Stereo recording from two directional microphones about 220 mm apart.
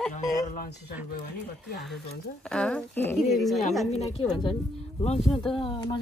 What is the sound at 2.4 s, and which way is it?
Speech, 5° left (ahead or behind).